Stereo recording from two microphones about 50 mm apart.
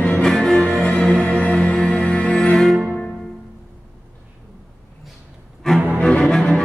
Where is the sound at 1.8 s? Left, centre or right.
Centre.